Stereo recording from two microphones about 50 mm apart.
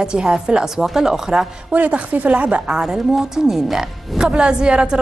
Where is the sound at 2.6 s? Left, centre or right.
Centre.